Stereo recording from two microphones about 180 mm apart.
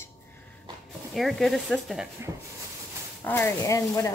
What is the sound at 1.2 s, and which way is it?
Speech, centre (ahead or behind).